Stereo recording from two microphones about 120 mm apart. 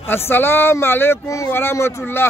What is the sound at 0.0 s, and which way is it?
Speech, 20° left (ahead or behind).